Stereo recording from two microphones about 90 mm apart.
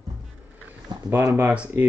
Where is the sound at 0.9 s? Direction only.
55° right (ahead or behind).